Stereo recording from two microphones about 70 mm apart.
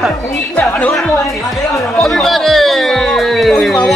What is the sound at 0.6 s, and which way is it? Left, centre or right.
Speech, left.